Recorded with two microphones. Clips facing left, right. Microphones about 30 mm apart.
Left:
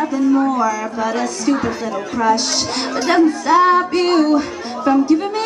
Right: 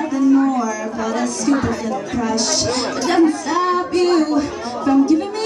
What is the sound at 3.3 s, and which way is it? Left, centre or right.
Female singing, centre.